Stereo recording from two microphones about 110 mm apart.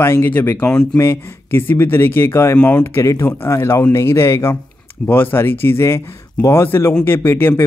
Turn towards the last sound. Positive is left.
turn(degrees=20)  # may be behind; listen again after turning